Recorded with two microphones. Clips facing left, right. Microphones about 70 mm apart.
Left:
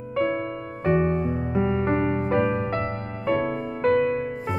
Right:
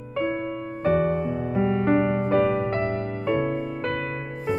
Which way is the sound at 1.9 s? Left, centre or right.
Left.